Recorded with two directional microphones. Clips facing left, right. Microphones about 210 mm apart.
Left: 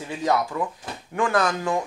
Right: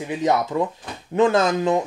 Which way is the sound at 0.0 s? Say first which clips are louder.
Right 3 dB; 20° right (ahead or behind).